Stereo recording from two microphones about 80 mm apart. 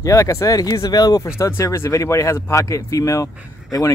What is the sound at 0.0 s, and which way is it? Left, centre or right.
Speech, left.